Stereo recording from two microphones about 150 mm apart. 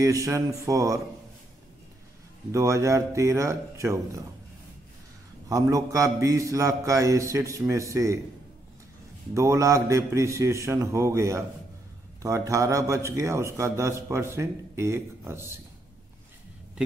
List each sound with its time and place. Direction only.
0.0 s a man's voice: 20° right (ahead or behind)
2.5 s a man's voice: 20° right (ahead or behind)
5.5 s a man's voice: 20° right (ahead or behind)
9.3 s a man's voice: 20° right (ahead or behind)